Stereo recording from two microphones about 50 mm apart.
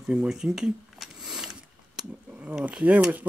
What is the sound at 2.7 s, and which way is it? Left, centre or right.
Stir, right.